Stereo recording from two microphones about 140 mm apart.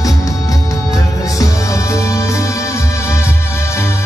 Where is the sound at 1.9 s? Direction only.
20° left (ahead or behind).